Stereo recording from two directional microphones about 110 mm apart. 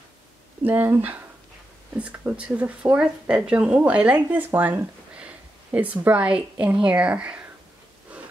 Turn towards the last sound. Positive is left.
turn(degrees=-10)  # may be behind; listen again after turning